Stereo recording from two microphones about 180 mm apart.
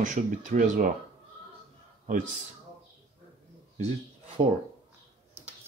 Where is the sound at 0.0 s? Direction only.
45° right (ahead or behind).